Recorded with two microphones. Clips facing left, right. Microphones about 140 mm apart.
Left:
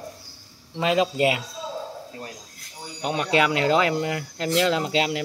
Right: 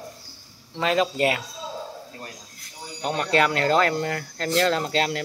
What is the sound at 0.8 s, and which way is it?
Speech, 15° left (ahead or behind).